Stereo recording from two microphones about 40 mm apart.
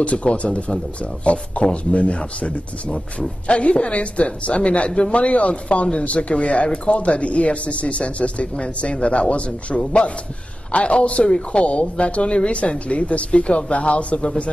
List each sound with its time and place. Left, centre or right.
0.0 s speech: left